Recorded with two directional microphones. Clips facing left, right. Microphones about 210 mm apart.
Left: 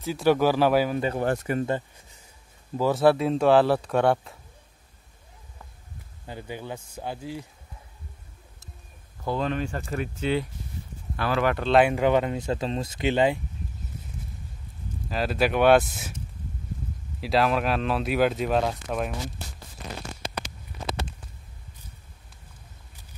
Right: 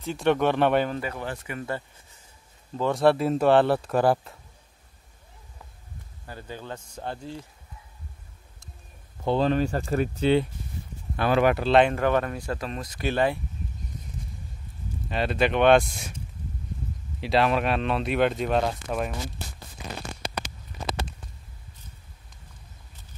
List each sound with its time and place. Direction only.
0.0 s speech: 5° left (ahead or behind)
1.2 s speech: 45° left (ahead or behind)
2.8 s speech: centre (ahead or behind)
6.2 s speech: 15° left (ahead or behind)
9.2 s speech: 30° right (ahead or behind)
11.1 s speech: 20° right (ahead or behind)
11.5 s speech: 5° right (ahead or behind)
11.8 s speech: 15° left (ahead or behind)
15.0 s speech: centre (ahead or behind)
17.2 s speech: centre (ahead or behind)